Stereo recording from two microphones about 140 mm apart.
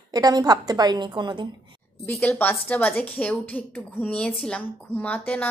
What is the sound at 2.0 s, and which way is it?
A woman's voice, 15° left (ahead or behind).